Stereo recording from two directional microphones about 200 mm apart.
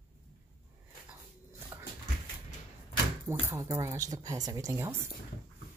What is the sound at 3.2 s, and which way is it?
Speech, 15° right (ahead or behind).